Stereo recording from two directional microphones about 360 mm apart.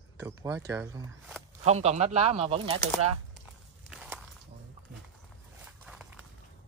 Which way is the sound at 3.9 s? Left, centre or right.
Centre.